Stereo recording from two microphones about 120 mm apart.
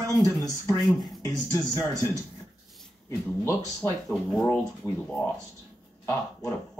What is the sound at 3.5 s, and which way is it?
Speech, 25° left (ahead or behind).